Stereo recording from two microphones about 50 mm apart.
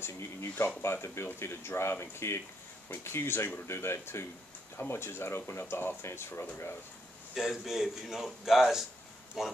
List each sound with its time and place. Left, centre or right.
0.0 s speech: left
7.3 s a man's voice: centre